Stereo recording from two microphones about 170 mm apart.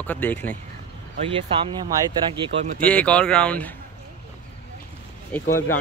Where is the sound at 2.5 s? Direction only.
90° right.